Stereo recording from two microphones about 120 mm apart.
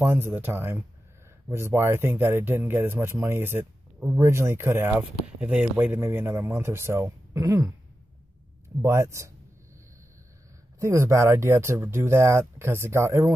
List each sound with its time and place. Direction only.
0.0 s speech: 20° right (ahead or behind)
8.8 s speech: 25° right (ahead or behind)
10.8 s speech: 25° right (ahead or behind)